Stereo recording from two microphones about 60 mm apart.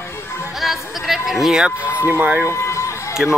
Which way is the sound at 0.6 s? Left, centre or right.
Centre.